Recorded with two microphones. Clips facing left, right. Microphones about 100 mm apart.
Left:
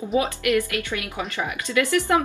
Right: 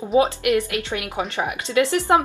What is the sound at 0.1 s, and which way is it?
Speech, 25° right (ahead or behind).